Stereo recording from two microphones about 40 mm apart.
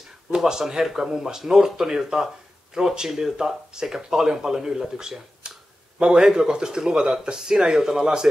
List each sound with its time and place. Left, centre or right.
0.3 s speech: centre